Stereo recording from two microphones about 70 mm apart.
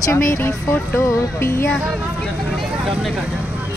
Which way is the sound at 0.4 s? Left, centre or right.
Left.